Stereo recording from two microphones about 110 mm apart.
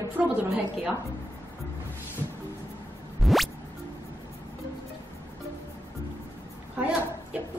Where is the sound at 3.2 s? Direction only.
Centre (ahead or behind).